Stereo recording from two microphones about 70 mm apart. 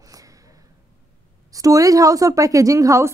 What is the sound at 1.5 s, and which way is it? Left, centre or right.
Speech, right.